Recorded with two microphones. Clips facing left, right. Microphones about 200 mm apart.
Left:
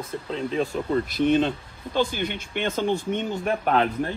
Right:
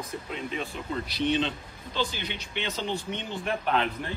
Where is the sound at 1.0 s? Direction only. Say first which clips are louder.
Left 4 dB; 50° left (ahead or behind).